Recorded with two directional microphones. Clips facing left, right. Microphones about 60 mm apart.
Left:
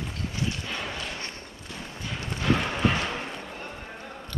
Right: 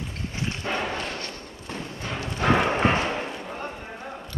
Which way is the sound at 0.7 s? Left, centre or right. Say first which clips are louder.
Right 6 dB; right.